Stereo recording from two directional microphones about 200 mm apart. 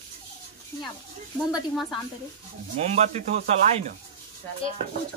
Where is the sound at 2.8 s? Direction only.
35° right (ahead or behind).